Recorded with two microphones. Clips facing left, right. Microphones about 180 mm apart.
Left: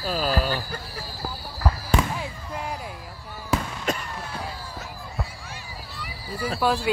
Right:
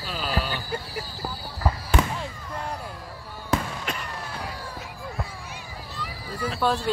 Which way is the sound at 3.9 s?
45° left (ahead or behind).